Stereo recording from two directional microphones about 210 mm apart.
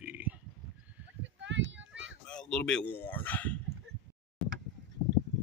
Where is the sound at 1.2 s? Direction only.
60° right (ahead or behind).